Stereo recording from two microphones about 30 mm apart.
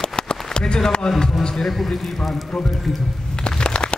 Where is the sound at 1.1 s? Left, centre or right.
Centre.